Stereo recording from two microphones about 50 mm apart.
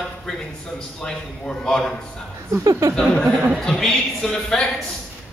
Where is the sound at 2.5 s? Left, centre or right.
Right.